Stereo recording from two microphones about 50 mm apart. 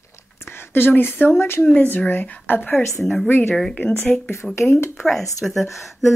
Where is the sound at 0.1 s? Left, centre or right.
Left.